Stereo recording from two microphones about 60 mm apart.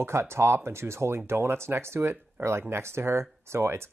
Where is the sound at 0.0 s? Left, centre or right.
Right.